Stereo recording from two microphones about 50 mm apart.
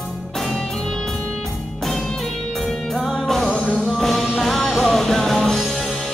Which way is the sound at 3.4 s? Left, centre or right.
Centre.